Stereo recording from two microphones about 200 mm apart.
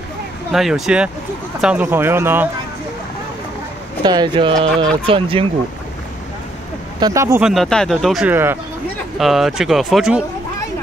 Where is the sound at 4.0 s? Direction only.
20° right (ahead or behind).